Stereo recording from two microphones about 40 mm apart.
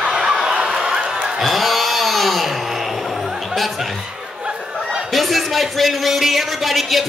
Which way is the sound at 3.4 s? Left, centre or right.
Centre.